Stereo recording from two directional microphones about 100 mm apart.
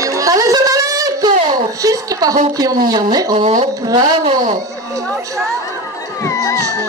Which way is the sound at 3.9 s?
40° right (ahead or behind).